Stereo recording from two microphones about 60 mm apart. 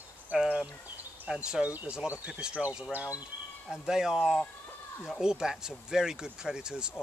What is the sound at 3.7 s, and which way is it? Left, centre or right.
Speech, centre.